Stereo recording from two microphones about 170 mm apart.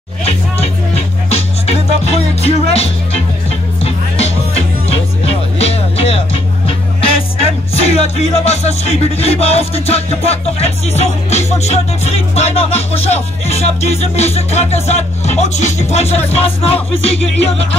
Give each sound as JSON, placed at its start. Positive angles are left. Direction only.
{"t": 0.2, "sound": "music", "side_deg": 40}
{"t": 7.7, "sound": "music", "side_deg": 35}